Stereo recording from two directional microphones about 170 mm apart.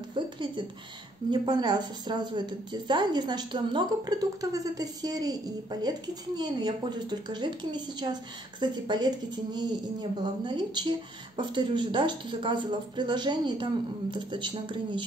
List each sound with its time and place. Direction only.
0.1 s speech: 30° right (ahead or behind)